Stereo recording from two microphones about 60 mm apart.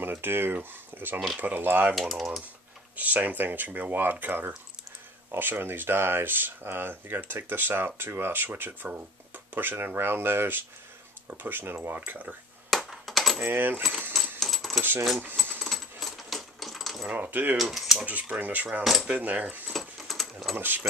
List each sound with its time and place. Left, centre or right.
0.0 s speech: right
2.0 s speech: centre
3.0 s speech: right
12.6 s computer keyboard: centre
13.4 s speech: right
14.4 s coin: centre
17.1 s speech: right
17.6 s speech: centre
18.0 s speech: right
19.7 s sewing machine: centre
20.5 s speech: right